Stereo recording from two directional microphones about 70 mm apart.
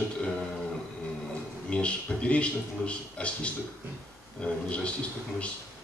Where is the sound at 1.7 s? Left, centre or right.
Centre.